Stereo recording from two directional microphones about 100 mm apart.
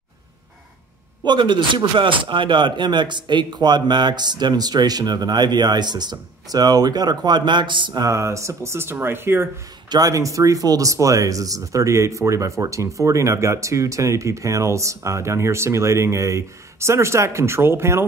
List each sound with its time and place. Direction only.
1.2 s speech: 50° right (ahead or behind)
8.0 s speech: 30° right (ahead or behind)
9.8 s speech: 40° right (ahead or behind)